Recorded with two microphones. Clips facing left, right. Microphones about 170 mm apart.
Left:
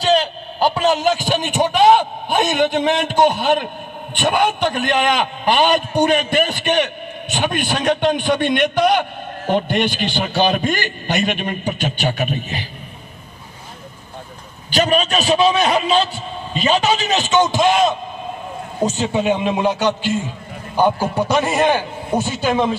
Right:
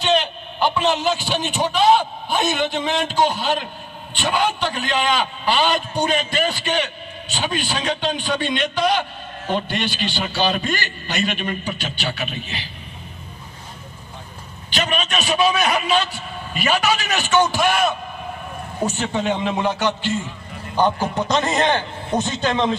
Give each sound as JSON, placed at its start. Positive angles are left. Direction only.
{"t": 0.0, "sound": "a man's voice", "side_deg": 35}
{"t": 14.7, "sound": "a man's voice", "side_deg": 40}